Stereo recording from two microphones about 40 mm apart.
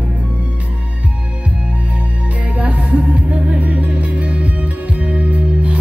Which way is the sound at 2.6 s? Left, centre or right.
Right.